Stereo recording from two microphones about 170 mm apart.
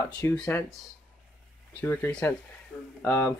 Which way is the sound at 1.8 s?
15° left (ahead or behind).